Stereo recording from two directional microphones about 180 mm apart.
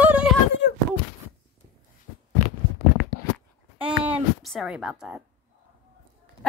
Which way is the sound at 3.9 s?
5° right (ahead or behind).